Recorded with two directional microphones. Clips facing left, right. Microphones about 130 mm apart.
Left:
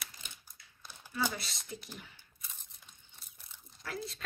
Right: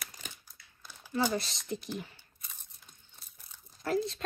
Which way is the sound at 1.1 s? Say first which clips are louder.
Right 6 dB; 40° right (ahead or behind).